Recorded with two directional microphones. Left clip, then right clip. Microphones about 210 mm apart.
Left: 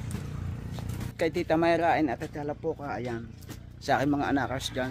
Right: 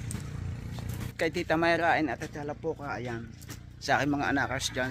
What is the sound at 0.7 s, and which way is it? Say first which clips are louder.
Speech: left 1 dB; centre (ahead or behind).